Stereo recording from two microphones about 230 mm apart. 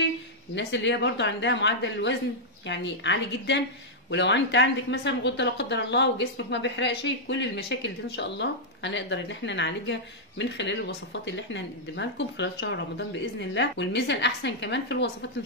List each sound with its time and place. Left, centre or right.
0.6 s speech: left